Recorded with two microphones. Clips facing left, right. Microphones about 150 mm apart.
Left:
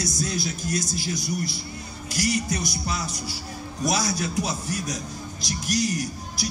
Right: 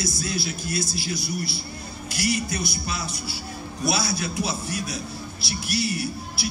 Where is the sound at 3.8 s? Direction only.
40° left (ahead or behind).